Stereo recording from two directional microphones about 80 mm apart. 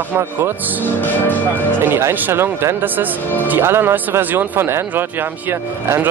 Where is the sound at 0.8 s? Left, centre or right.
Left.